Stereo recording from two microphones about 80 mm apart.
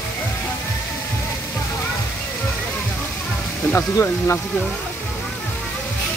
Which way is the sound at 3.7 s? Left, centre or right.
Left.